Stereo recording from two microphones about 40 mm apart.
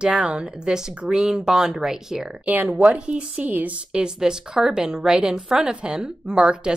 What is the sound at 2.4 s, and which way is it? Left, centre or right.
Speech, right.